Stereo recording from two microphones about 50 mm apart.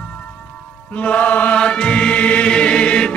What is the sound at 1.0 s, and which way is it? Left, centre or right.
Mantra, left.